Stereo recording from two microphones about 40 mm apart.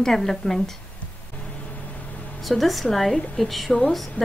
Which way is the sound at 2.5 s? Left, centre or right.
Centre.